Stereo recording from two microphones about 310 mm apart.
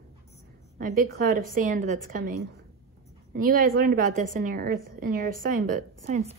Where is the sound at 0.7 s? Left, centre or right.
Right.